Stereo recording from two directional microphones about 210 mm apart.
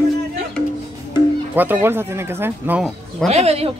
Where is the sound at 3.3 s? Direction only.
30° right (ahead or behind).